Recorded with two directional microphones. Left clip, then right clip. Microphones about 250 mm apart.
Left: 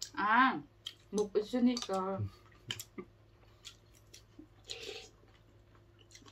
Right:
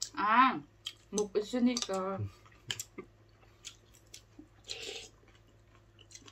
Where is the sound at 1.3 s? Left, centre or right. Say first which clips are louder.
Right 1 dB; centre.